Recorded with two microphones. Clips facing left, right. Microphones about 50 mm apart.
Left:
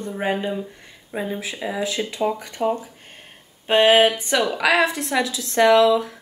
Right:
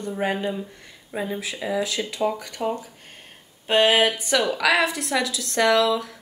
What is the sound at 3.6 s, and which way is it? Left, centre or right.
Speech, left.